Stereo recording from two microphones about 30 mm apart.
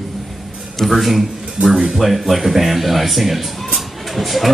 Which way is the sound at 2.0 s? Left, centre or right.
Centre.